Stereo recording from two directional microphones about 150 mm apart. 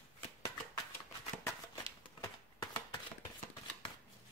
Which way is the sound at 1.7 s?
25° left (ahead or behind).